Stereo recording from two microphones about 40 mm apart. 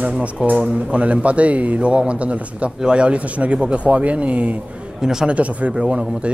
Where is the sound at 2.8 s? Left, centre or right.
Right.